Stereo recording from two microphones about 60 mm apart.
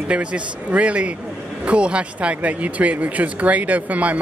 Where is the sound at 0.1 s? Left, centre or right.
Centre.